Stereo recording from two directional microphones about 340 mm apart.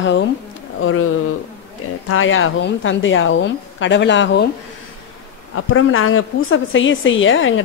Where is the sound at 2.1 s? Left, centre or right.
Left.